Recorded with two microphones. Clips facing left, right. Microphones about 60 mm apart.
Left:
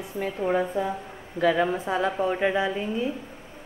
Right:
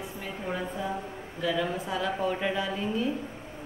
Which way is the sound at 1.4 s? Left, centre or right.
Left.